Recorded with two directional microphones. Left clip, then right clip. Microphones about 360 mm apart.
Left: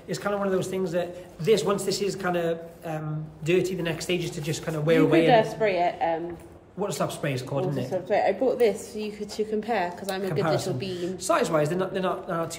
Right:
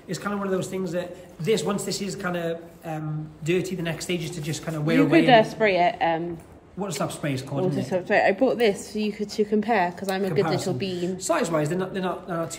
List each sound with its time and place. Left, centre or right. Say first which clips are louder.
0.1 s a man's voice: left 1 dB; centre
5.2 s a woman's voice: right 3 dB; right
6.8 s a man's voice: left 1 dB; centre
7.9 s a woman's voice: right 3 dB; right
11.0 s a man's voice: left 2 dB; centre